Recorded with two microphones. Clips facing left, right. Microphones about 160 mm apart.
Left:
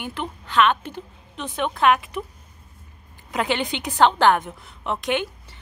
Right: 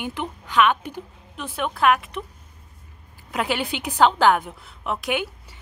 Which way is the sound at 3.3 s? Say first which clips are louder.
Left 1 dB; 5° right (ahead or behind).